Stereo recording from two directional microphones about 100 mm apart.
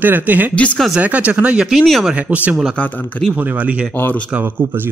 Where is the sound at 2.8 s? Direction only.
10° left (ahead or behind).